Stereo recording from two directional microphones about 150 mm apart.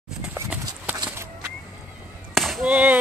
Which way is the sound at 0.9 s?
25° right (ahead or behind).